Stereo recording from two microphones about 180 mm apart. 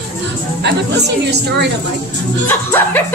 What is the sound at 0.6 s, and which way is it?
A woman's voice, 70° right (ahead or behind).